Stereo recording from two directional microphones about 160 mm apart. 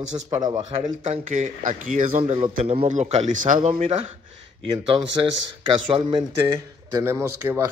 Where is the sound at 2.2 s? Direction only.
40° right (ahead or behind).